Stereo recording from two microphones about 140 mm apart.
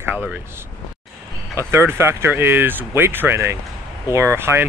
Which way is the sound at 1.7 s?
20° right (ahead or behind).